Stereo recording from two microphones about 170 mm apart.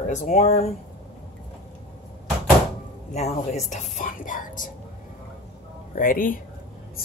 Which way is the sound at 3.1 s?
40° left (ahead or behind).